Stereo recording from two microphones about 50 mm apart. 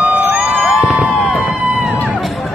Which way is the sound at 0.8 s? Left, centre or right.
Centre.